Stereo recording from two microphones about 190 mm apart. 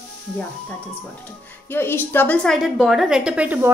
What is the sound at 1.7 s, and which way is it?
A woman's voice, 10° left (ahead or behind).